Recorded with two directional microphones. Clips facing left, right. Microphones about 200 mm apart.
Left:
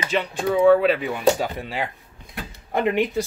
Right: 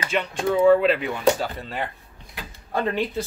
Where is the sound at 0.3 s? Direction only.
Centre (ahead or behind).